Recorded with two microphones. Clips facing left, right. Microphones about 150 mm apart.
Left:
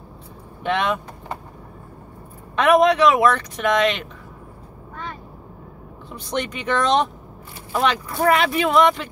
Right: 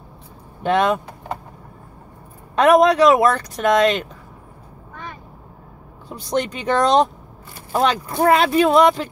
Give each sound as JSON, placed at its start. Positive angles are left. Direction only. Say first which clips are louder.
{"t": 0.6, "sound": "speech", "louder": "right 4 dB", "side_deg": -40}
{"t": 2.5, "sound": "speech", "louder": "right 2 dB", "side_deg": -40}
{"t": 6.0, "sound": "speech", "louder": "right 4 dB", "side_deg": -35}